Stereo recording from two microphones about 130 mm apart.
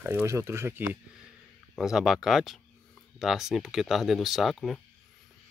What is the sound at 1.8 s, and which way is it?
Speech, 5° right (ahead or behind).